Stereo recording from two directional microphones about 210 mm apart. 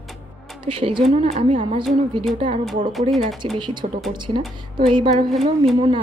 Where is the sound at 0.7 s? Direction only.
25° right (ahead or behind).